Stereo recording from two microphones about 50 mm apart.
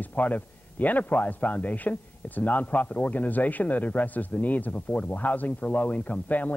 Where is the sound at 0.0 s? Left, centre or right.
Left.